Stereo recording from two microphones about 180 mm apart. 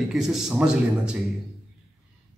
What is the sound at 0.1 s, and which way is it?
A man's voice, centre (ahead or behind).